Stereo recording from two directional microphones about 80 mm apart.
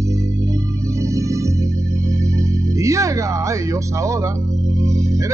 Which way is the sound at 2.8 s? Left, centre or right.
Right.